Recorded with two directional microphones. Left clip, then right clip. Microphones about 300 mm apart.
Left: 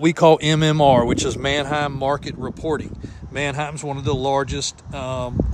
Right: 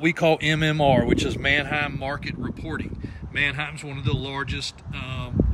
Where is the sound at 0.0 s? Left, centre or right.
Centre.